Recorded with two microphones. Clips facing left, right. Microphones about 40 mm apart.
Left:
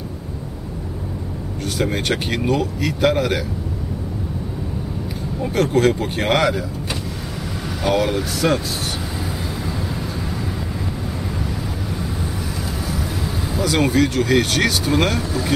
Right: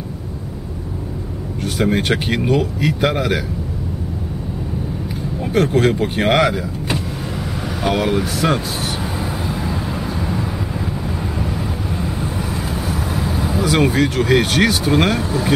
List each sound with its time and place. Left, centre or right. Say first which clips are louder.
1.6 s speech: right 4 dB; centre
5.5 s speech: right 1 dB; centre
7.8 s speech: right 1 dB; centre
9.6 s vehicle: right 3 dB; right
12.7 s vehicle: right 3 dB; right
13.6 s speech: right 1 dB; centre